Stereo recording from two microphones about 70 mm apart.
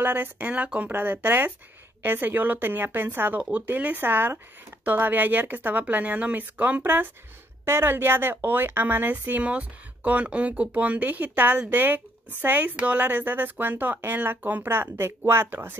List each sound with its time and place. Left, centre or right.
0.0 s a woman's voice: right
0.9 s a woman's voice: right